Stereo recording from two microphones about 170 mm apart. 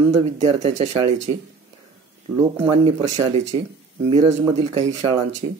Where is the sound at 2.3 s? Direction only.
20° right (ahead or behind).